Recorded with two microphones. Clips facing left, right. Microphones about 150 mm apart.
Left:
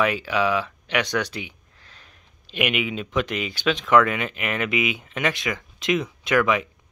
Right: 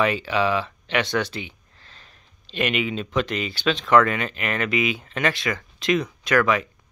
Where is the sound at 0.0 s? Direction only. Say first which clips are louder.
Even; 10° left (ahead or behind).